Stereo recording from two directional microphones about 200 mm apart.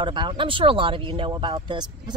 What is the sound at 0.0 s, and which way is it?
Speech, 25° right (ahead or behind).